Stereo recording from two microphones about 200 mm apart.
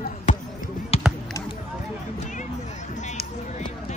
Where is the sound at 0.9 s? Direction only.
30° left (ahead or behind).